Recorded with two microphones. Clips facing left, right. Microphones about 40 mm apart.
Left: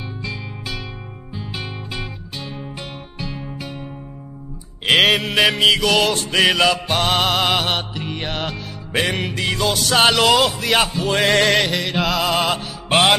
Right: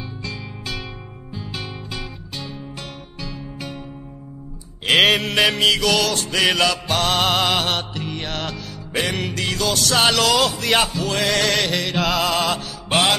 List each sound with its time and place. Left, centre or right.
0.2 s music: centre
3.2 s music: left
4.8 s mantra: centre
5.9 s music: centre
8.9 s music: left
9.2 s music: centre
10.6 s mantra: centre
10.9 s music: left
11.6 s mantra: centre
12.4 s music: left